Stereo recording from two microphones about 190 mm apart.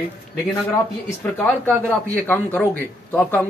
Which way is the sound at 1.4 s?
10° left (ahead or behind).